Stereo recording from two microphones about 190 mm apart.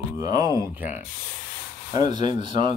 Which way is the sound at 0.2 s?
20° right (ahead or behind).